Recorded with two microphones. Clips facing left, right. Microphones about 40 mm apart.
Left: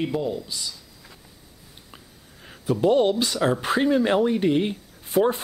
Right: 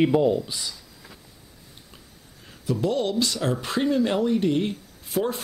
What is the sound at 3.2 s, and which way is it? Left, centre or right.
A man's voice, centre.